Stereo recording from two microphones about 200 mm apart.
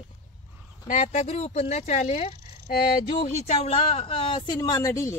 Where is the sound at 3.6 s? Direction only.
30° left (ahead or behind); by 5.1 s 15° left (ahead or behind).